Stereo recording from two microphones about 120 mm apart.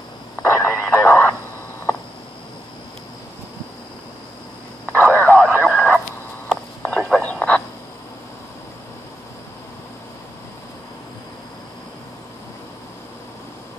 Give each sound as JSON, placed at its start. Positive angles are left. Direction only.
{"t": 0.4, "sound": "radio", "side_deg": 20}
{"t": 4.8, "sound": "radio", "side_deg": 10}
{"t": 6.8, "sound": "a sound", "side_deg": 5}